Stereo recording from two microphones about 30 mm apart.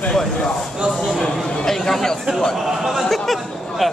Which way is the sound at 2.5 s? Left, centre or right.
Centre.